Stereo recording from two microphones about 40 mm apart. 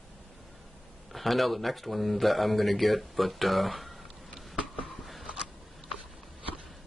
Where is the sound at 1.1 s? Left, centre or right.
Centre.